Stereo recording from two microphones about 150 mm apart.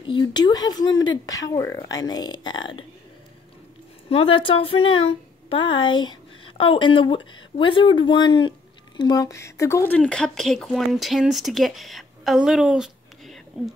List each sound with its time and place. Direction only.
0.0 s speech: 30° left (ahead or behind)
4.1 s speech: 40° left (ahead or behind); by 13.4 s centre (ahead or behind)